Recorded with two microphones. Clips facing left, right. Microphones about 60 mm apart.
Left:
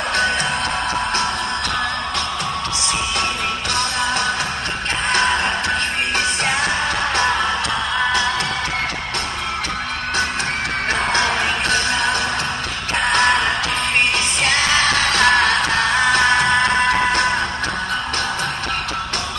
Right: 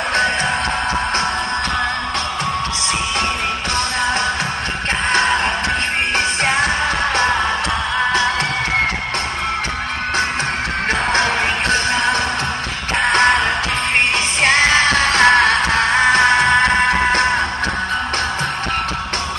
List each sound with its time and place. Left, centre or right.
5.1 s music: right
11.1 s music: right